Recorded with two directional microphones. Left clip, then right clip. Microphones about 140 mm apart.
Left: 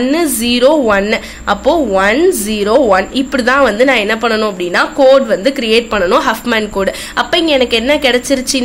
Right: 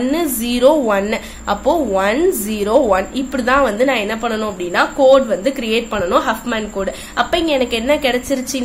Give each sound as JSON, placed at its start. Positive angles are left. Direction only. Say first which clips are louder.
{"t": 0.0, "sound": "a woman's voice", "louder": "left 5 dB", "side_deg": 15}